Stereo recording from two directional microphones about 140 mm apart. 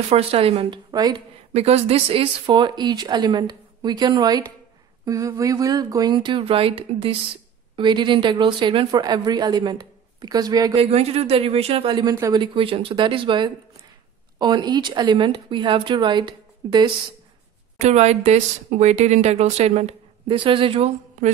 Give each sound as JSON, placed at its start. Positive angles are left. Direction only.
{"t": 0.1, "sound": "speech", "side_deg": -45}
{"t": 10.8, "sound": "speech", "side_deg": -45}
{"t": 12.0, "sound": "speech", "side_deg": -30}
{"t": 17.7, "sound": "speech", "side_deg": -50}